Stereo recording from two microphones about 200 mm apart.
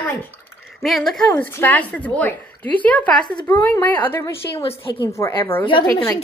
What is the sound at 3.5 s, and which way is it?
A woman's voice, 10° left (ahead or behind).